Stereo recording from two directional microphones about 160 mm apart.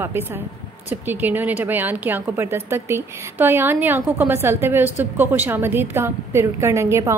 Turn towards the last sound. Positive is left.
turn(degrees=-15)  # may be behind; listen again after turning